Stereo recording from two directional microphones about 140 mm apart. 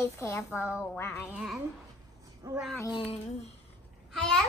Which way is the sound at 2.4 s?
25° right (ahead or behind).